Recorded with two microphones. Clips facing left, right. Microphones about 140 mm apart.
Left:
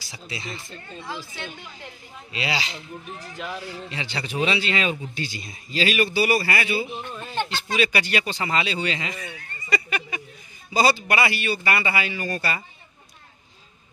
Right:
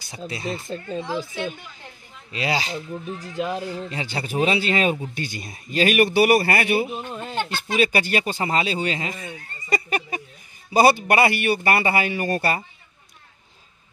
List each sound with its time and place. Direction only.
0.0 s speech: 45° right (ahead or behind)
0.5 s speech: 30° right (ahead or behind)
2.3 s a man's voice: 45° right (ahead or behind)
9.3 s a sound: 35° right (ahead or behind)
10.7 s a man's voice: 55° right (ahead or behind)